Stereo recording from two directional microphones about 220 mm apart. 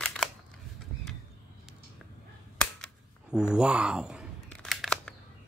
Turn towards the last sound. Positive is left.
turn(degrees=0)  # may be behind; listen again after turning